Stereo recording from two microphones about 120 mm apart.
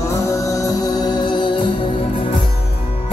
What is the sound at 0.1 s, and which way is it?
Music, 25° left (ahead or behind).